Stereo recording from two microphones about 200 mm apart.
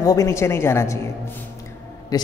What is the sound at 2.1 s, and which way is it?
Speech, 15° left (ahead or behind).